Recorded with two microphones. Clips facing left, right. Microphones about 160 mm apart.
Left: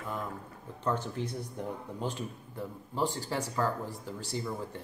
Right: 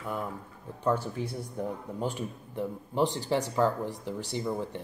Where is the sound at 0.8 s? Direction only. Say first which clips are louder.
Right 4 dB; 10° right (ahead or behind).